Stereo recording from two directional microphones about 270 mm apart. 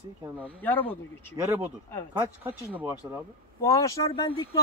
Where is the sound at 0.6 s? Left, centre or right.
Centre.